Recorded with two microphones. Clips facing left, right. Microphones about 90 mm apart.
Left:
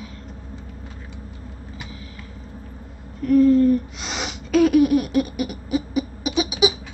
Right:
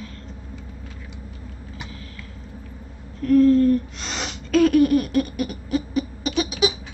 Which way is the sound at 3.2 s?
5° left (ahead or behind).